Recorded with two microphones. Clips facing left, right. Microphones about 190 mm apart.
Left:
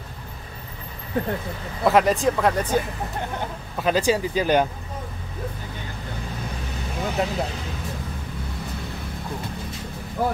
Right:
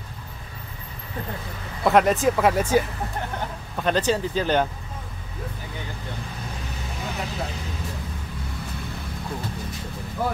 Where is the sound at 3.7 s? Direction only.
5° left (ahead or behind).